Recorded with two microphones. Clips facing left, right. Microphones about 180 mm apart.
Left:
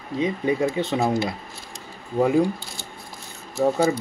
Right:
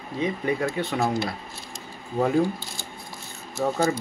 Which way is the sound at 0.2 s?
20° left (ahead or behind).